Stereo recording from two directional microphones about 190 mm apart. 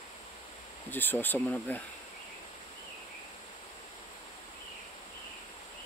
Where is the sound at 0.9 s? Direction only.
10° left (ahead or behind).